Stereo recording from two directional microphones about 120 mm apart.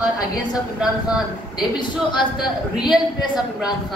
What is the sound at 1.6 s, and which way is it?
Speech, 40° left (ahead or behind).